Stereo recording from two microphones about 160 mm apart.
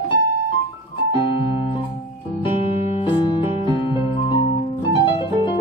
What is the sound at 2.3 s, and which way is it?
Music, 35° left (ahead or behind).